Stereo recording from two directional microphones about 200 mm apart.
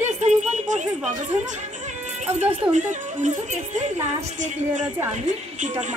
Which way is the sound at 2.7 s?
40° right (ahead or behind).